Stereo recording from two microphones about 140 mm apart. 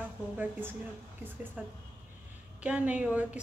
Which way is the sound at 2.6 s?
10° right (ahead or behind).